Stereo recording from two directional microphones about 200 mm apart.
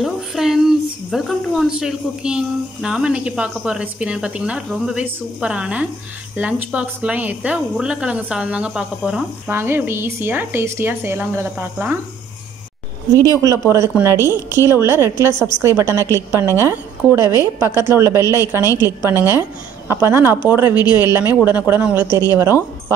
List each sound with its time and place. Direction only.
0.0 s a woman's voice: centre (ahead or behind)
13.4 s speech: 15° right (ahead or behind)